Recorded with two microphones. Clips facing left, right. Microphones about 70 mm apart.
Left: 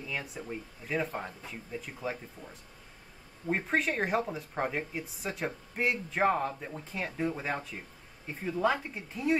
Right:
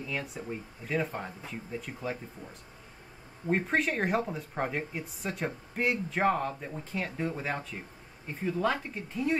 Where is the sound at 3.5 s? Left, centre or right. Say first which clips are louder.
Right 2 dB; centre.